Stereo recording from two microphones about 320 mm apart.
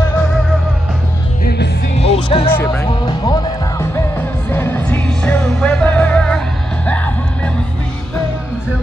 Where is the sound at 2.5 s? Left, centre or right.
Centre.